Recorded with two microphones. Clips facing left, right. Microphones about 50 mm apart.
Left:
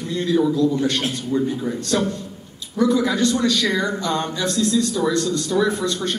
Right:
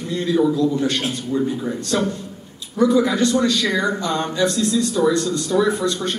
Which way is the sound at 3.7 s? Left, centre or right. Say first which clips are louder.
Right 1 dB; right.